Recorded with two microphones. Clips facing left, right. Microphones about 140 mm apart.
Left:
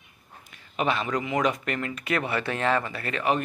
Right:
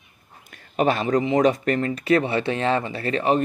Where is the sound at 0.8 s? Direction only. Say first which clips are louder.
Right 6 dB; 40° right (ahead or behind).